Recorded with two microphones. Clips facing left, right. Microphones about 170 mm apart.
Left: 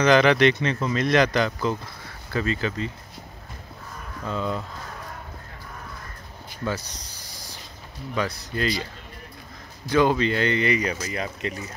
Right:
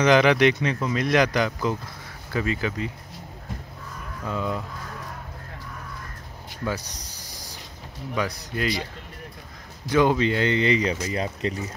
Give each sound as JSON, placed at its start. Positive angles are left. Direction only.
{"t": 0.0, "sound": "speech", "side_deg": -15}
{"t": 4.2, "sound": "speech", "side_deg": -10}
{"t": 8.1, "sound": "speech", "side_deg": -15}
{"t": 9.8, "sound": "speech", "side_deg": -15}